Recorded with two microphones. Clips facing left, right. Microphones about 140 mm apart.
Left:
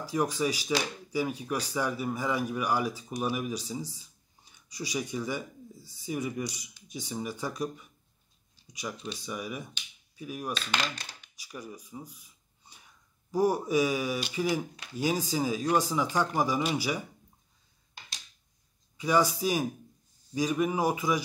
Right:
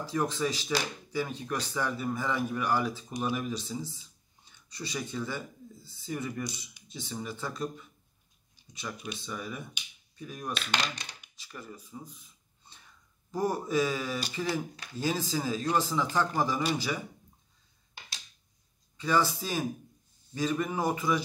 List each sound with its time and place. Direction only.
0.0 s speech: 10° left (ahead or behind)
8.9 s speech: 10° right (ahead or behind)
9.2 s speech: 10° left (ahead or behind)
18.9 s speech: 15° left (ahead or behind)